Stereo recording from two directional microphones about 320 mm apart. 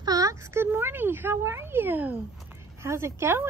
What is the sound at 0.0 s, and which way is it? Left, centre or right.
Speech, centre.